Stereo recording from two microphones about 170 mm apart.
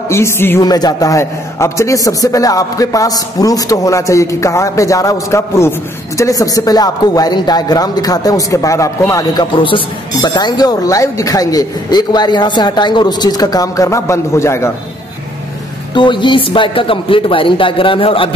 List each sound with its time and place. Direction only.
0.1 s a man's voice: 15° left (ahead or behind)
15.9 s speech: 30° left (ahead or behind)